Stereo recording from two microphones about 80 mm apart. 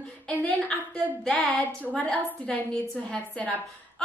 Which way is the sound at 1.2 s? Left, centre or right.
Centre.